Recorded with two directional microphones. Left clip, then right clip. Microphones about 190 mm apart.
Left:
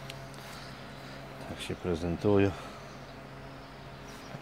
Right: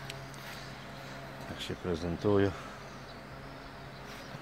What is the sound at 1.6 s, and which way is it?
Speech, 15° left (ahead or behind).